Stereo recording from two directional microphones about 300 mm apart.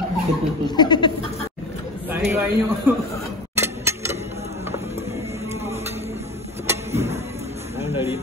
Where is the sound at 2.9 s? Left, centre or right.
Centre.